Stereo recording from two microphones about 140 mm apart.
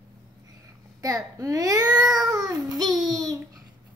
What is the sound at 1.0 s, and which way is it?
A child's voice, 25° right (ahead or behind).